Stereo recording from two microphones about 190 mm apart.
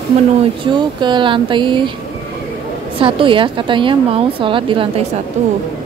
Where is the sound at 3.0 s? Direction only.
25° right (ahead or behind).